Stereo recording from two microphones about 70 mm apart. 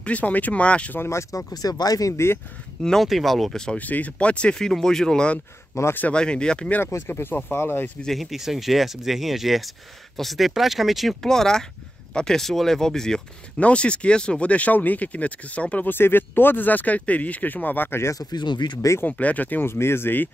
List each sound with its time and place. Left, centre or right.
0.0 s speech: left
0.9 s speech: left
1.3 s speech: left
2.8 s speech: centre
3.7 s speech: left
5.7 s speech: left
6.1 s speech: centre
6.9 s speech: left
8.0 s speech: centre
15.9 s speech: left
18.1 s speech: left
19.0 s speech: left
19.6 s speech: left